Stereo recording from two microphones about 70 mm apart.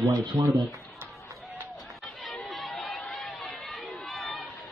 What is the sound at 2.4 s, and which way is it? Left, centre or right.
Crowd, centre.